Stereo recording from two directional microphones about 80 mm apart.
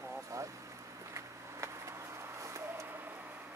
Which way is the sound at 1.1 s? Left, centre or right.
Right.